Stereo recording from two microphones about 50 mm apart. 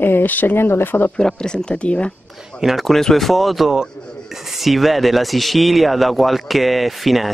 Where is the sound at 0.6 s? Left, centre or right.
Left.